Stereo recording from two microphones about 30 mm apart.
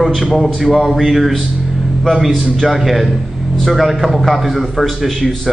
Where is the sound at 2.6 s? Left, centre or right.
Centre.